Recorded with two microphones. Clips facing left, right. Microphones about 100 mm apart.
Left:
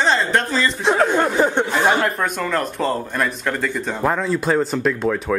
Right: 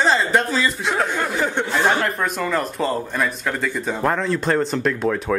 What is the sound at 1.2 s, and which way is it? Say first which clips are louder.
Speech: left 5 dB; 30° left (ahead or behind).